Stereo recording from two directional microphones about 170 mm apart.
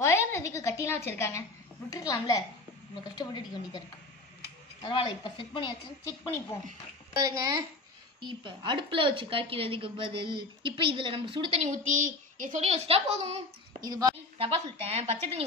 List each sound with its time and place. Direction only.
0.0 s a woman's voice: 15° left (ahead or behind)
4.8 s speech: 30° left (ahead or behind)
7.2 s a child's voice: 20° right (ahead or behind)
13.8 s a child's voice: 20° right (ahead or behind)
14.4 s a woman's voice: 35° right (ahead or behind)